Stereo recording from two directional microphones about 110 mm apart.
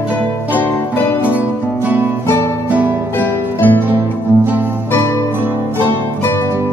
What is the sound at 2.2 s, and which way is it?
Music, 20° left (ahead or behind).